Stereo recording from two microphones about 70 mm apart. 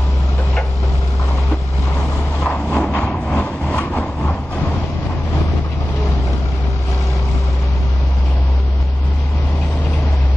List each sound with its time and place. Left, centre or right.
2.4 s vehicle: centre
3.6 s train: centre